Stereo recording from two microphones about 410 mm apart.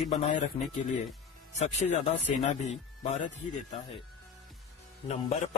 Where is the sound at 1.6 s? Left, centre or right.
Centre.